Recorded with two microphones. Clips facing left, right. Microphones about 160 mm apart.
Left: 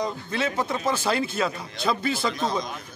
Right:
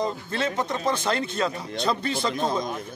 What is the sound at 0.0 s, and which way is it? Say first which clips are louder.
A man's voice: even; 5° left (ahead or behind).